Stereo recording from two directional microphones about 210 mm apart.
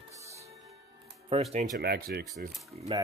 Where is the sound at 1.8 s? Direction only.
50° right (ahead or behind).